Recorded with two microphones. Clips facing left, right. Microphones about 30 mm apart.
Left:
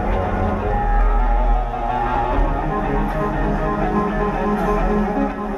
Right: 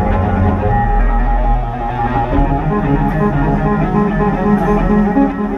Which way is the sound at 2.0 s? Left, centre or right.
Centre.